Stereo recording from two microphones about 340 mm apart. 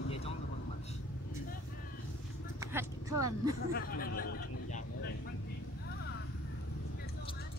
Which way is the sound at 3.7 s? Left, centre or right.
Left.